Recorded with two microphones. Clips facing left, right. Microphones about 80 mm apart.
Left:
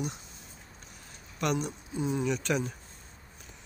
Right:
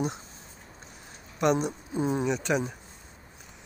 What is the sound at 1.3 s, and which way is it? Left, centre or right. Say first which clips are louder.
Speech: right 6 dB; right.